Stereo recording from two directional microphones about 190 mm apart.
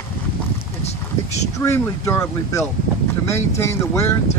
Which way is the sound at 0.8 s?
35° left (ahead or behind).